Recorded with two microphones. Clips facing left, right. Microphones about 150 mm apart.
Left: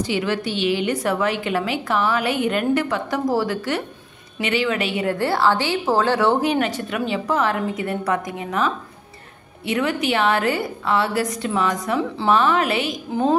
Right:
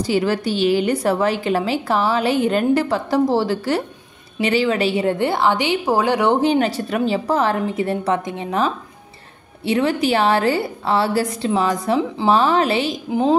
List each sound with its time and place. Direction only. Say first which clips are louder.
0.0 s a woman's voice: right 4 dB; 35° right (ahead or behind)
5.2 s a woman's voice: right 1 dB; 20° right (ahead or behind)
6.4 s a woman's voice: right 3 dB; 30° right (ahead or behind)